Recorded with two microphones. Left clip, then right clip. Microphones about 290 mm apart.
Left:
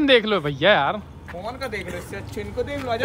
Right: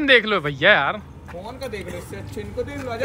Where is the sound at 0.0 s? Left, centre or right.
Centre.